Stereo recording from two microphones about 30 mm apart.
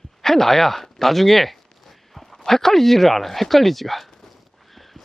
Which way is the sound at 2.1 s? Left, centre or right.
Centre.